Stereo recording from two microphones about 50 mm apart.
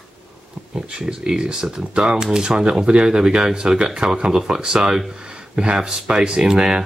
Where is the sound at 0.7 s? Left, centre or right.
Centre.